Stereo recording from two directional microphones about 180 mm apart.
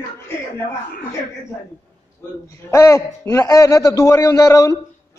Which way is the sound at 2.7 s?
15° left (ahead or behind).